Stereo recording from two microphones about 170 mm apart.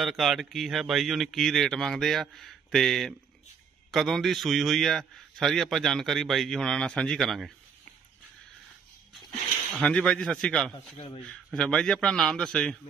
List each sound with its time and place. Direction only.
0.0 s a man's voice: centre (ahead or behind)
9.8 s a man's voice: 5° left (ahead or behind)